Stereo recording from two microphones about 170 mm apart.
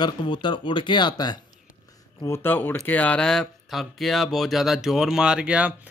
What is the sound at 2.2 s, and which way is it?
Speech, 15° left (ahead or behind).